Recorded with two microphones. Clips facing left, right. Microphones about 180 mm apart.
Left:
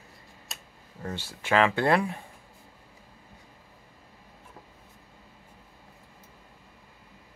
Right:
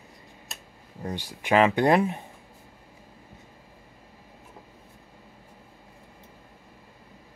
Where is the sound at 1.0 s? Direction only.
15° right (ahead or behind).